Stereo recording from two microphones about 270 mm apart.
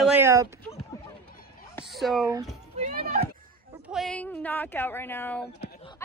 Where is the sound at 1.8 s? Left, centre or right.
Centre.